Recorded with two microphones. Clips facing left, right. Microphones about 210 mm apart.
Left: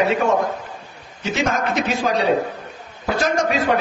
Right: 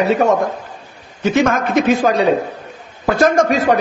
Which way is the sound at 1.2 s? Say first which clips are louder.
Right 6 dB; 50° right (ahead or behind).